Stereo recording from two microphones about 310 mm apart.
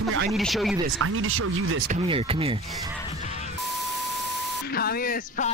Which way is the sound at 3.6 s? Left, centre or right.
Centre.